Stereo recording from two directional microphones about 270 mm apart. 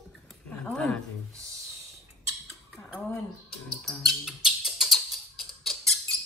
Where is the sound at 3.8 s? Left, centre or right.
Centre.